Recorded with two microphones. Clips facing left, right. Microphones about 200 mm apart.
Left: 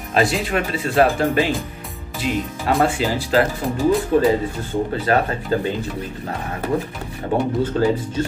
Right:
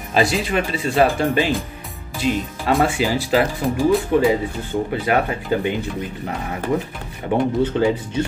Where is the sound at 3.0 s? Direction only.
10° right (ahead or behind).